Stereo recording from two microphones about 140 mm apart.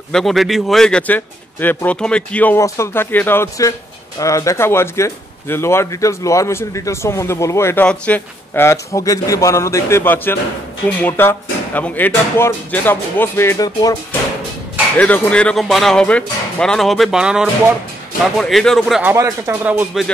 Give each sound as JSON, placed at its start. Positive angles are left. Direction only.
{"t": 0.1, "sound": "speech", "side_deg": 0}
{"t": 15.0, "sound": "speech", "side_deg": 10}
{"t": 19.1, "sound": "speech", "side_deg": -20}